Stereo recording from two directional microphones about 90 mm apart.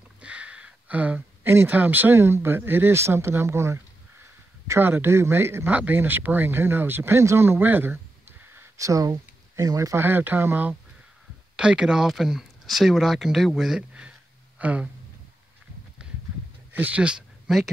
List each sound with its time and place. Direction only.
0.2 s speech: 15° right (ahead or behind)
8.7 s speech: 40° right (ahead or behind)
10.0 s speech: 20° right (ahead or behind)
11.5 s speech: 10° right (ahead or behind)
16.0 s horse: 10° right (ahead or behind)
16.7 s speech: 15° right (ahead or behind)